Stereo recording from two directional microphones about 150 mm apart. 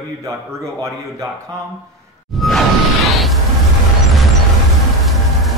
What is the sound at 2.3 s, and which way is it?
Whoosh, centre (ahead or behind).